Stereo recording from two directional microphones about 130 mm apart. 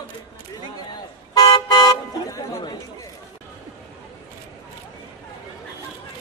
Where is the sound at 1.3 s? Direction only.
30° left (ahead or behind).